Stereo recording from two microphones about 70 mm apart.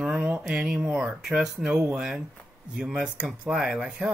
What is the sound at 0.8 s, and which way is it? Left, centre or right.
Speech, right.